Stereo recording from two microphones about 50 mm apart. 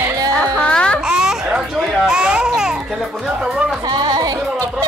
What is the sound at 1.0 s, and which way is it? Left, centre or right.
Baby cry, centre.